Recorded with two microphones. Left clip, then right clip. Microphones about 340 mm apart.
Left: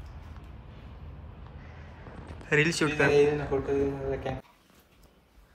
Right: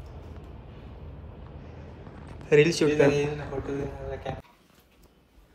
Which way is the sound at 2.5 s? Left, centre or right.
Centre.